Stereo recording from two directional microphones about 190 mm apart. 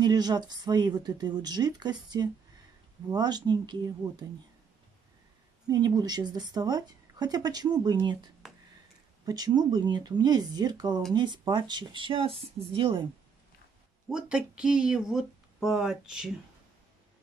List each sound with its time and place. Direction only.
0.0 s speech: 20° right (ahead or behind)
5.7 s speech: 20° right (ahead or behind)
14.0 s speech: 5° right (ahead or behind)